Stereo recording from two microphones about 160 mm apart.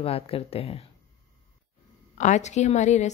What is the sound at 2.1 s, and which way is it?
Speech, 45° left (ahead or behind).